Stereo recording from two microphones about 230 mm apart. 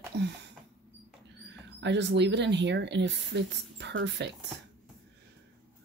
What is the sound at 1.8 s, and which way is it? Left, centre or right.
Speech, right.